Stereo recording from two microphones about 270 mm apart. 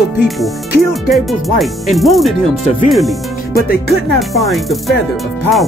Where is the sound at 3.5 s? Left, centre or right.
Left.